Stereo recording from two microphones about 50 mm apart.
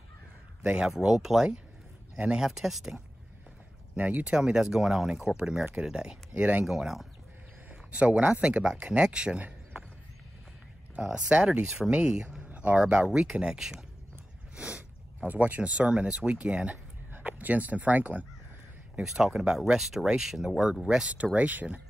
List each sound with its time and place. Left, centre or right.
0.6 s speech: centre
3.9 s speech: right
4.3 s speech: centre
6.3 s speech: right
6.6 s speech: centre
7.9 s speech: right
11.0 s speech: centre
14.5 s a sound: right
15.2 s speech: right
17.1 s speech: right
19.0 s speech: centre; by 21.8 s right